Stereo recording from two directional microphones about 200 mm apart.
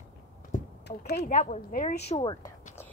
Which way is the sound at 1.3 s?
35° left (ahead or behind).